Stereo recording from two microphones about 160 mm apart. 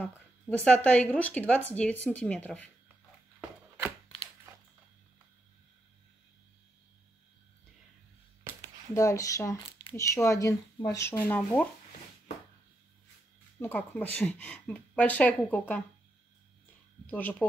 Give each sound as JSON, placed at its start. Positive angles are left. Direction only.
{"t": 0.7, "sound": "speech", "side_deg": 10}
{"t": 3.3, "sound": "a sound", "side_deg": -10}
{"t": 8.5, "sound": "a sound", "side_deg": -15}
{"t": 8.9, "sound": "speech", "side_deg": 20}
{"t": 13.6, "sound": "speech", "side_deg": 10}
{"t": 17.1, "sound": "speech", "side_deg": 10}